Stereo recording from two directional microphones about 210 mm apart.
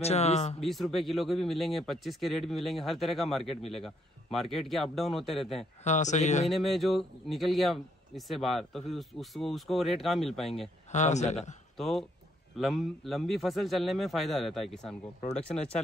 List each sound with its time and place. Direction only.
0.0 s speech: 30° left (ahead or behind)
0.6 s speech: centre (ahead or behind)
5.9 s speech: 35° left (ahead or behind)
6.5 s speech: centre (ahead or behind)
10.9 s speech: 35° left (ahead or behind)
11.7 s speech: centre (ahead or behind)